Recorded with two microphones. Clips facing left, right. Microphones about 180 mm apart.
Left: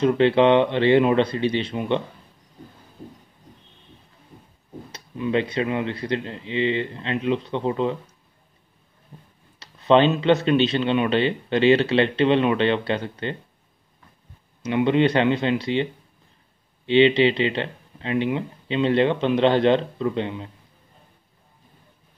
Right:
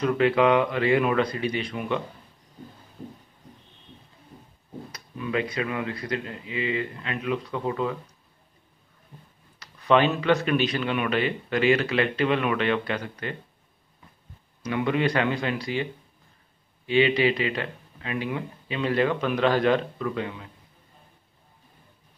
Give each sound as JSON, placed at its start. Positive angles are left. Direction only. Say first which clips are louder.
{"t": 0.0, "sound": "speech", "louder": "left 4 dB", "side_deg": 30}
{"t": 4.9, "sound": "speech", "louder": "left 5 dB", "side_deg": 25}
{"t": 9.6, "sound": "speech", "louder": "left 4 dB", "side_deg": 25}
{"t": 14.6, "sound": "speech", "louder": "left 6 dB", "side_deg": 25}